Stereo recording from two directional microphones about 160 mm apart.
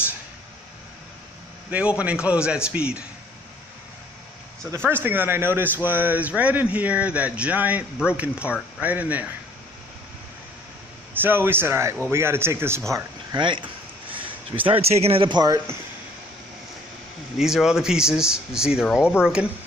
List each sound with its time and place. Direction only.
1.7 s speech: 10° right (ahead or behind)
4.6 s speech: 15° right (ahead or behind)
11.1 s speech: 15° right (ahead or behind)
12.9 s a sound: 25° right (ahead or behind)
14.6 s speech: 35° right (ahead or behind); by 15.8 s 20° right (ahead or behind)
17.4 s speech: 5° right (ahead or behind)